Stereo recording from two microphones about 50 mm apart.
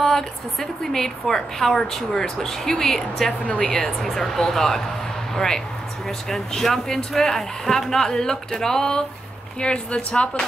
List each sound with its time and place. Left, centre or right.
0.0 s a woman's voice: centre